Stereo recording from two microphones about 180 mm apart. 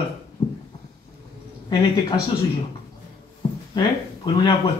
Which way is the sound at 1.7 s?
25° left (ahead or behind).